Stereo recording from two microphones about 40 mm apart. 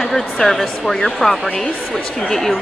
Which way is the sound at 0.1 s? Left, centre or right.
Centre.